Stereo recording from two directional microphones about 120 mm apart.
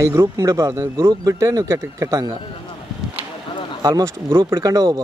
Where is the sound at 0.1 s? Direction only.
25° right (ahead or behind).